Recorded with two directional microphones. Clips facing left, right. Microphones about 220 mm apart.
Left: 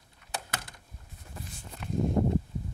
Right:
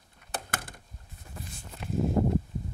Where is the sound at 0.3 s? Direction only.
50° right (ahead or behind).